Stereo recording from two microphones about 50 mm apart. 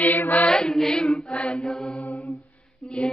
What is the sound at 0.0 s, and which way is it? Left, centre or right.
Mantra, left.